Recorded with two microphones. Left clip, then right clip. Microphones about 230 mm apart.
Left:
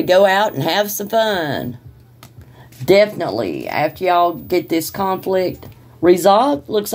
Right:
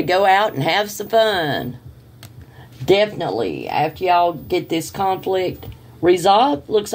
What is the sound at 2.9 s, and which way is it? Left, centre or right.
Speech, left.